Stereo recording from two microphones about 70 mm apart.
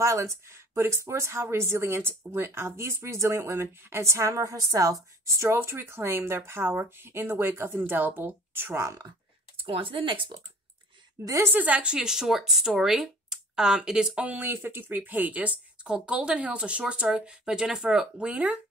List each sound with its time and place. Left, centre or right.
0.0 s speech: right
5.4 s speech: right
11.4 s speech: right; by 14.2 s centre
14.2 s speech: right